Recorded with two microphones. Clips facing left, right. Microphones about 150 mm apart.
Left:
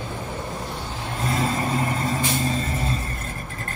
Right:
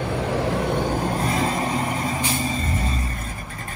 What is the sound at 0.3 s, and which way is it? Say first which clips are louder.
Vehicle: right 9 dB; 90° right.